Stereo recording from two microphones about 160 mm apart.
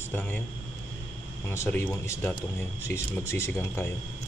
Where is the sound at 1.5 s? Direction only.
15° left (ahead or behind).